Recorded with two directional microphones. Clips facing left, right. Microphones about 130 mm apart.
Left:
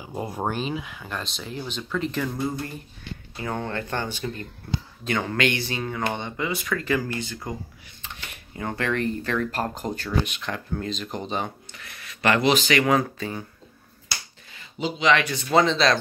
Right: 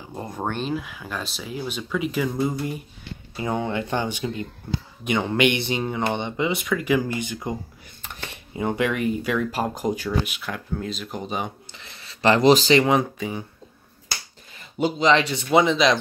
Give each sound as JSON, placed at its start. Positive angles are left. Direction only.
{"t": 0.0, "sound": "speech", "side_deg": 10}
{"t": 11.7, "sound": "speech", "side_deg": -25}
{"t": 14.8, "sound": "speech", "side_deg": -50}
{"t": 15.0, "sound": "speech", "side_deg": -25}